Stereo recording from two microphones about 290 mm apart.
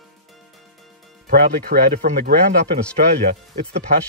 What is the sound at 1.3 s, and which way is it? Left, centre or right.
Speech, right.